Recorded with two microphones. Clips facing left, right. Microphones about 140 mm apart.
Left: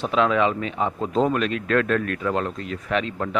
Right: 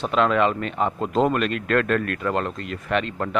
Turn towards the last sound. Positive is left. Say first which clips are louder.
# even
turn(degrees=0)  # may be behind; listen again after turning